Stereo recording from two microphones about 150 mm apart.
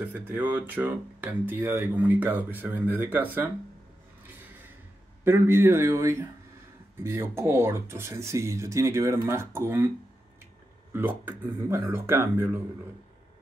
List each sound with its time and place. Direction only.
0.0 s speech: 10° right (ahead or behind)
5.2 s speech: 15° right (ahead or behind)
10.9 s speech: 10° right (ahead or behind)